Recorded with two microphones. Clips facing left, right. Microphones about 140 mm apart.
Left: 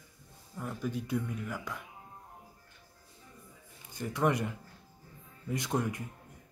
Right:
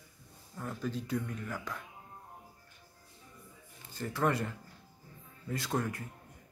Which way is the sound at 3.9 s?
15° left (ahead or behind).